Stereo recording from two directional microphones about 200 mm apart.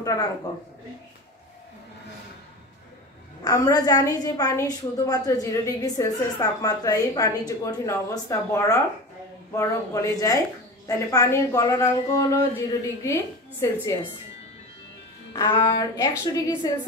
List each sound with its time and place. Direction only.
0.0 s speech: 15° left (ahead or behind)
3.4 s a woman's voice: 15° left (ahead or behind)
15.3 s a woman's voice: 15° left (ahead or behind)